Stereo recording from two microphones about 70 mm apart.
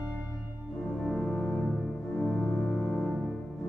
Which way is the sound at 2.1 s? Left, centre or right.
Centre.